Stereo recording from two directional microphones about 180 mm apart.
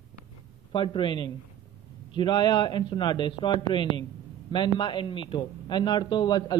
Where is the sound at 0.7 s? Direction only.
30° left (ahead or behind).